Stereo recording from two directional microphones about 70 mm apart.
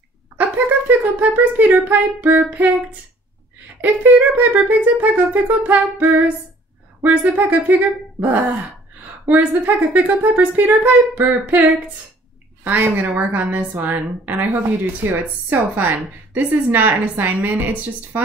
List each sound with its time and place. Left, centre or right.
0.4 s a sound: right
3.8 s a woman's voice: right
7.3 s a woman's voice: right
12.6 s a woman's voice: right